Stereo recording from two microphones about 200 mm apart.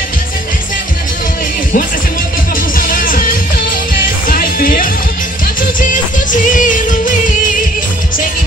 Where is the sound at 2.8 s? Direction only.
45° left (ahead or behind).